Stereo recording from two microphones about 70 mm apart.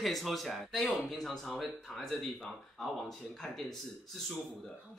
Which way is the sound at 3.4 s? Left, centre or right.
Centre.